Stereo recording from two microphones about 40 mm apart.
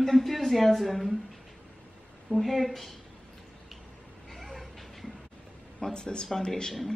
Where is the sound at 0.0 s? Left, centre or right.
Centre.